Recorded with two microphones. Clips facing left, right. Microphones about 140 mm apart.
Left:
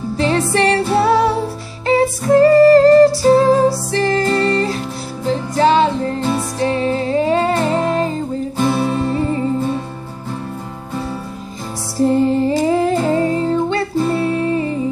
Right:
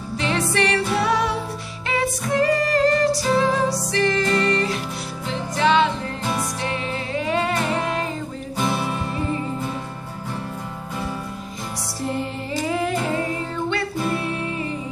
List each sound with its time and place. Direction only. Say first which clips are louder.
0.5 s music: left 6 dB; 30° left (ahead or behind)
12.0 s music: left 14 dB; 35° left (ahead or behind)